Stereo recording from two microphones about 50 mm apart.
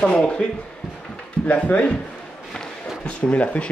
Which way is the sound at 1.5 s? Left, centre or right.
Left.